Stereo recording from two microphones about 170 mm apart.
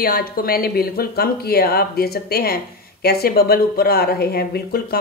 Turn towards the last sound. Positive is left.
turn(degrees=65)  # may be behind; listen again after turning